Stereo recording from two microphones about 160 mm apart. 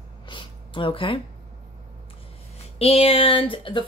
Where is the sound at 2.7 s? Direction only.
40° left (ahead or behind).